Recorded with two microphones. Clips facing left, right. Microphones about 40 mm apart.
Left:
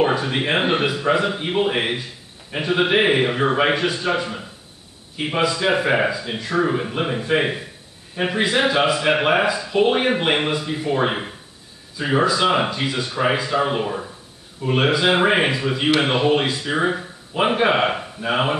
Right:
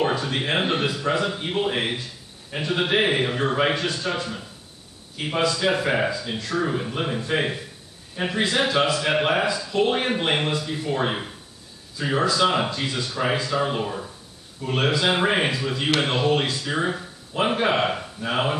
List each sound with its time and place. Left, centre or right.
0.0 s a man's voice: centre